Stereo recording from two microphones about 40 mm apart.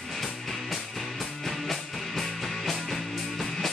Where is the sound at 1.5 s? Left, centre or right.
Centre.